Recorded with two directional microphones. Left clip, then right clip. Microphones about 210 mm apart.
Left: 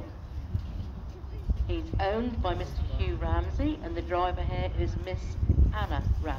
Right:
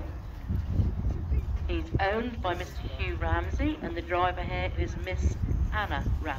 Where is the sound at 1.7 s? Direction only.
5° right (ahead or behind).